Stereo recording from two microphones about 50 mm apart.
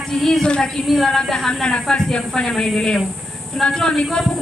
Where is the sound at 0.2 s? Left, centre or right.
Centre.